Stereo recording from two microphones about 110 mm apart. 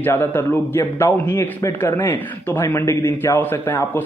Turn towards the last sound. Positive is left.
turn(degrees=20)  # may be behind; listen again after turning